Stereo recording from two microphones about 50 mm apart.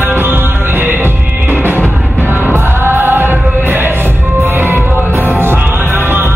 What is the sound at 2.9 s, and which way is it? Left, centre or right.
Music, right.